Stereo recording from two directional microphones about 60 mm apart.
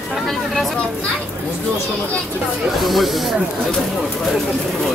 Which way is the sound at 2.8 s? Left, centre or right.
Centre.